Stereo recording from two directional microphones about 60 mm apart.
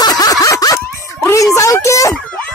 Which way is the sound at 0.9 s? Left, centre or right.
Left.